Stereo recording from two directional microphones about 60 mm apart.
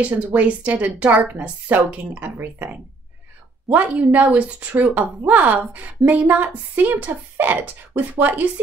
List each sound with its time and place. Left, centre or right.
0.0 s speech: right
3.6 s speech: right